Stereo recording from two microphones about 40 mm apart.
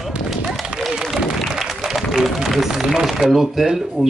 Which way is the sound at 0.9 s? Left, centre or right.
Centre.